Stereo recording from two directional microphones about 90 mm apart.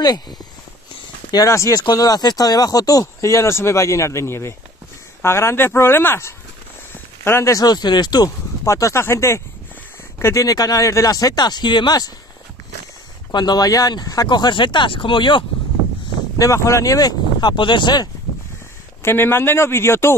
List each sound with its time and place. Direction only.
0.0 s speech: 50° left (ahead or behind)
1.3 s a man's voice: 35° left (ahead or behind)
6.9 s a sound: 30° left (ahead or behind)
7.6 s speech: 50° left (ahead or behind)
8.6 s speech: 35° left (ahead or behind); by 12.1 s 55° left (ahead or behind)
13.3 s speech: 50° left (ahead or behind)
16.3 s speech: 35° left (ahead or behind); by 18.0 s 55° left (ahead or behind)
19.0 s a man's voice: 25° left (ahead or behind)